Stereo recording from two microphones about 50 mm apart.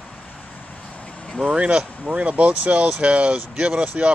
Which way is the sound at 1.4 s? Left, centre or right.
Right.